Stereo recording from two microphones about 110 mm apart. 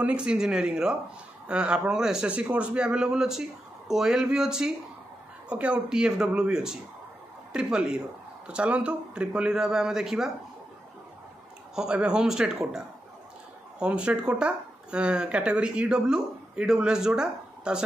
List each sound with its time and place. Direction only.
0.0 s speech: 10° right (ahead or behind)
11.7 s speech: 5° right (ahead or behind)